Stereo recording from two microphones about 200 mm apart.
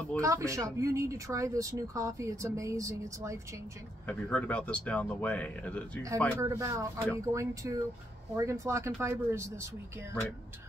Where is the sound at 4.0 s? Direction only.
5° left (ahead or behind).